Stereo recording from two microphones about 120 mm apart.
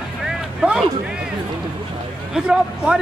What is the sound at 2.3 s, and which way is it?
Speech, 5° right (ahead or behind).